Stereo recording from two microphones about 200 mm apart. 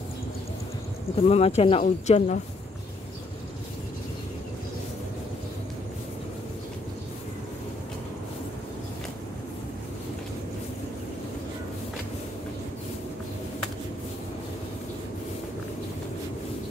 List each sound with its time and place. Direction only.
1.1 s speech: 30° left (ahead or behind)